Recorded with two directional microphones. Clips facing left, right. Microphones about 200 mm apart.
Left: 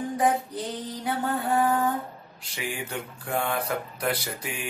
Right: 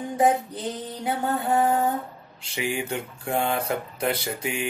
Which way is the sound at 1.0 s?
25° right (ahead or behind).